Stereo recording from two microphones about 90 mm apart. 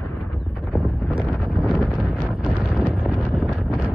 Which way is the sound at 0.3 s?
5° right (ahead or behind).